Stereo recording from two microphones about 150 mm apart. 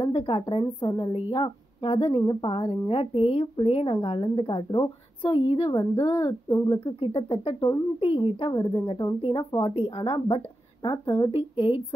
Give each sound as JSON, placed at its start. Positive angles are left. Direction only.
{"t": 0.0, "sound": "a woman's voice", "side_deg": 40}
{"t": 5.7, "sound": "a woman's voice", "side_deg": 20}